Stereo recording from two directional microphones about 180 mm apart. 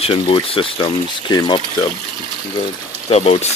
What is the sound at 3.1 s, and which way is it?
Speech, 35° left (ahead or behind).